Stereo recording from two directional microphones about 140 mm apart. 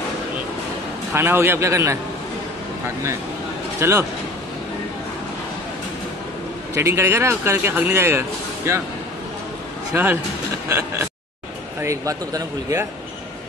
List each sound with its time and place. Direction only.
1.1 s a man's voice: 15° right (ahead or behind)
3.8 s speech: 20° right (ahead or behind)
6.7 s speech: 20° right (ahead or behind)
10.7 s speech: 20° right (ahead or behind)